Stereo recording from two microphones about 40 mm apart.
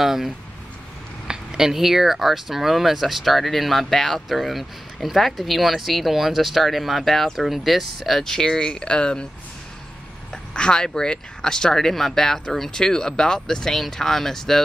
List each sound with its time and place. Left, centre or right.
0.0 s speech: centre; by 9.3 s left
10.3 s speech: left